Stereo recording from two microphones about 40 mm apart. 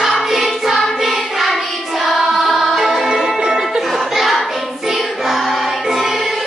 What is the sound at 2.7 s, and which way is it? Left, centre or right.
Music, centre.